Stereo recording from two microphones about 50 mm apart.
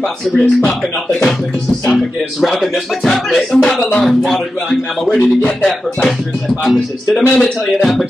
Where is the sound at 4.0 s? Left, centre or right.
Centre.